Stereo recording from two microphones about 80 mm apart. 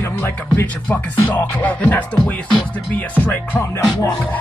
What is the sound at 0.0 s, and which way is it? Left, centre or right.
Music, left.